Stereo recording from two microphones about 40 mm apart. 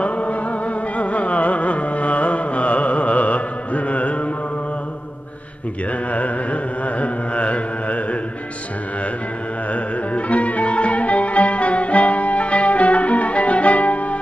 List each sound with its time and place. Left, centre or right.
0.0 s music: left
0.9 s carnatic music: left
6.1 s carnatic music: left
10.1 s music: left